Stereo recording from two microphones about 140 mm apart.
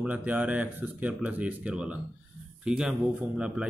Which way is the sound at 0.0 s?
10° right (ahead or behind).